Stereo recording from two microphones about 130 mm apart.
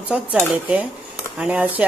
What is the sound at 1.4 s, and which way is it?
Speech, 10° right (ahead or behind).